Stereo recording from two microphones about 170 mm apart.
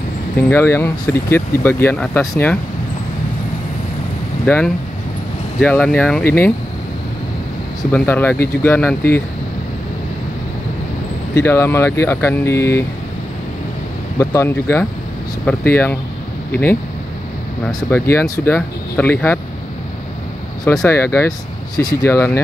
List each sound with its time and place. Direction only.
0.4 s speech: 15° left (ahead or behind)
4.5 s speech: 10° left (ahead or behind)
7.9 s speech: 10° left (ahead or behind)
11.3 s speech: 15° left (ahead or behind)
14.1 s speech: 20° left (ahead or behind)
17.9 s speech: 15° left (ahead or behind)
20.6 s speech: 5° left (ahead or behind)
20.9 s speech: 15° left (ahead or behind)